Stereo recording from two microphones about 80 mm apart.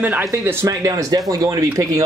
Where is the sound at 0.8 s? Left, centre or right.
Right.